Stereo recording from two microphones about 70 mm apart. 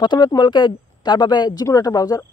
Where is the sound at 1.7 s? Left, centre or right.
Left.